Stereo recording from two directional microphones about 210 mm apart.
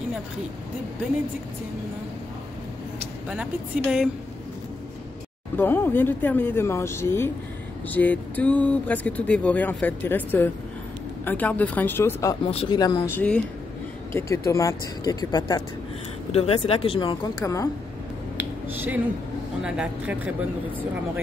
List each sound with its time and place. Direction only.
3.3 s speech: 5° right (ahead or behind)
5.6 s speech: 10° left (ahead or behind)
12.4 s speech: 25° left (ahead or behind)
18.4 s a sound: 10° right (ahead or behind)
19.6 s speech: 5° right (ahead or behind)